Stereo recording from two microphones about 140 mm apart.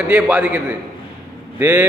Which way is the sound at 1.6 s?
15° right (ahead or behind).